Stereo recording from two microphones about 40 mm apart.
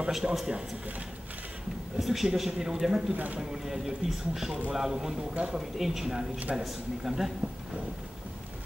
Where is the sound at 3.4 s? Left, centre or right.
Centre.